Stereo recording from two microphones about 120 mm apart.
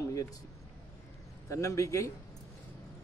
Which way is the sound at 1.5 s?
25° left (ahead or behind).